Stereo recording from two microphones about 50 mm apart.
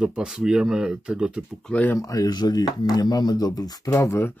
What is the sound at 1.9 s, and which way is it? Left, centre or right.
Speech, left.